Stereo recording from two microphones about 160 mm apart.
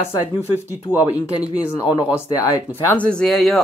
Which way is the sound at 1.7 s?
20° left (ahead or behind).